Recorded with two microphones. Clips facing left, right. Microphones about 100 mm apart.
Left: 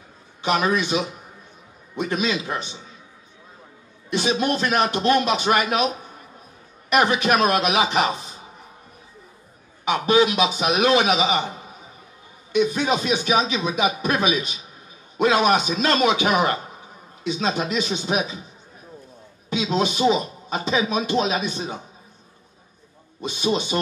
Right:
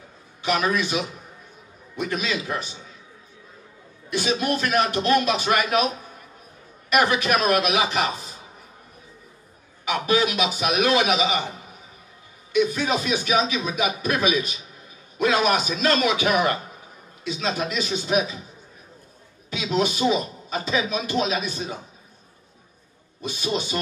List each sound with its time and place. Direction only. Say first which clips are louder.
0.4 s speech: left 2 dB; 25° left (ahead or behind)
4.1 s speech: left 2 dB; 25° left (ahead or behind)
6.9 s speech: left 2 dB; 25° left (ahead or behind)
9.8 s speech: left 4 dB; 25° left (ahead or behind)
12.5 s speech: left 1 dB; 25° left (ahead or behind)
19.5 s speech: left 1 dB; 25° left (ahead or behind)
23.2 s speech: left 3 dB; 25° left (ahead or behind)